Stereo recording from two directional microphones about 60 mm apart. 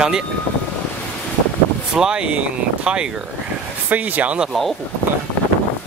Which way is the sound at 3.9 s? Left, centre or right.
Right.